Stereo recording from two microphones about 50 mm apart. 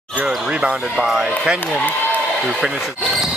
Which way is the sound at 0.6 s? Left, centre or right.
Centre.